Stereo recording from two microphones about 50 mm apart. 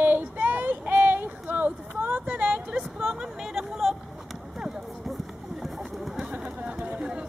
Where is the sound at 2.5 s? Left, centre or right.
Right.